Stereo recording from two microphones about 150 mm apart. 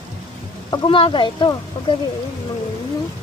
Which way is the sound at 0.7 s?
35° left (ahead or behind).